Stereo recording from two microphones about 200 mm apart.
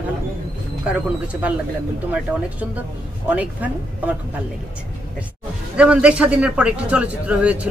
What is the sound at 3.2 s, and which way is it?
Speech, 5° right (ahead or behind).